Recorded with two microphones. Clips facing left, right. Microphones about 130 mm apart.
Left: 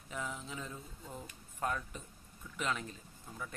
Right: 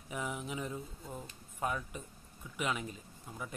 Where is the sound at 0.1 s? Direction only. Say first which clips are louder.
Right 3 dB; 15° right (ahead or behind).